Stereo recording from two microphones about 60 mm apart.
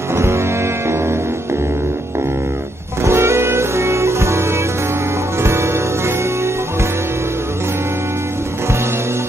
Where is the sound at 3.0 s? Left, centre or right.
Right.